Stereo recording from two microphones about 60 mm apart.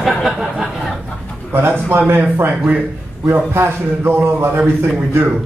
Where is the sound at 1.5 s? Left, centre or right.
Right.